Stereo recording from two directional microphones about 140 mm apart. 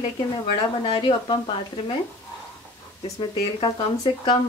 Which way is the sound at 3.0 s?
40° left (ahead or behind).